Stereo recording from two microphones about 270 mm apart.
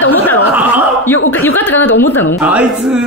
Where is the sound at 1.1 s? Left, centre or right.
Left.